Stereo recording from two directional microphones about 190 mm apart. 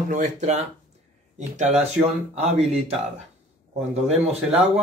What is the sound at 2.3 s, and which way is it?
Speech, 35° right (ahead or behind).